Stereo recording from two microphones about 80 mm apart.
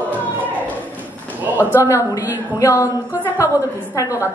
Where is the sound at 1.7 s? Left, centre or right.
Left.